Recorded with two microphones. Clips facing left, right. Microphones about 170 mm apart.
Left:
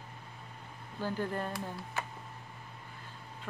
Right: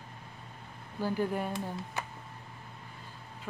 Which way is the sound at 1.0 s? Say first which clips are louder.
Right 3 dB; 10° right (ahead or behind).